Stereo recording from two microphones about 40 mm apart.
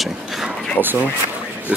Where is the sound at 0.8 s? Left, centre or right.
Left.